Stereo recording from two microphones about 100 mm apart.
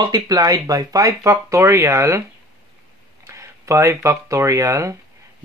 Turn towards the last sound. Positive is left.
turn(degrees=-30)  # may be behind; listen again after turning